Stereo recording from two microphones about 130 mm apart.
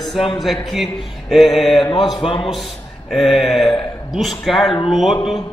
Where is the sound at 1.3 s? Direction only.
Centre (ahead or behind).